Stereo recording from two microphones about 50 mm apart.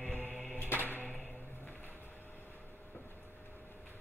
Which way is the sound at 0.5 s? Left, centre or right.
Left.